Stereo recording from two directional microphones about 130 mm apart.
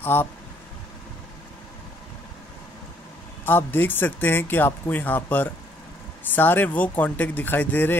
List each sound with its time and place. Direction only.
0.0 s speech: 15° left (ahead or behind)
3.4 s speech: 15° left (ahead or behind)